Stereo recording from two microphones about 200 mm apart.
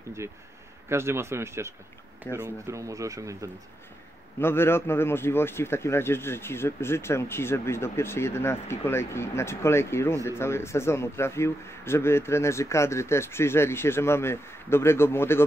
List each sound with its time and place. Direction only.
0.8 s speech: 10° right (ahead or behind)
4.4 s a man's voice: 10° left (ahead or behind)